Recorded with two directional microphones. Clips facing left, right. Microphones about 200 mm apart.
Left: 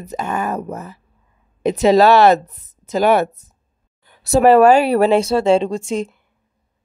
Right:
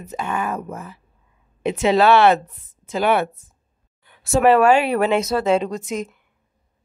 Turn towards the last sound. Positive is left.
turn(degrees=30)  # may be behind; listen again after turning